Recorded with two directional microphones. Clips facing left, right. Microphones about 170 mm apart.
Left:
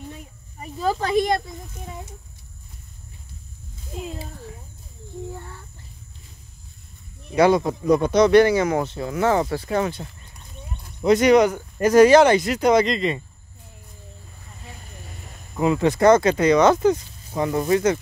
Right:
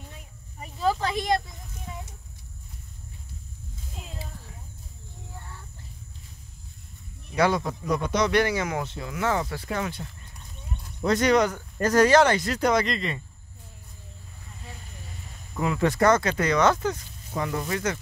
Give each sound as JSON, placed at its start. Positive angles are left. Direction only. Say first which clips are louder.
{"t": 0.7, "sound": "speech", "louder": "left 5 dB", "side_deg": 45}
{"t": 7.3, "sound": "speech", "louder": "left 7 dB", "side_deg": 20}
{"t": 11.1, "sound": "speech", "louder": "left 6 dB", "side_deg": 15}
{"t": 15.6, "sound": "speech", "louder": "left 5 dB", "side_deg": 20}